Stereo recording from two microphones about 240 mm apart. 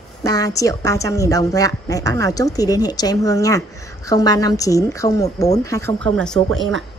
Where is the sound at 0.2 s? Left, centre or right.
Centre.